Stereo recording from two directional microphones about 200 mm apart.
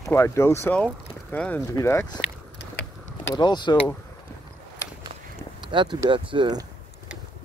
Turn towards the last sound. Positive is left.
turn(degrees=-20)  # may be behind; listen again after turning